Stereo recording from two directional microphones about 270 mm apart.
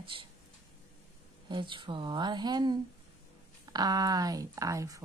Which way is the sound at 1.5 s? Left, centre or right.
Centre.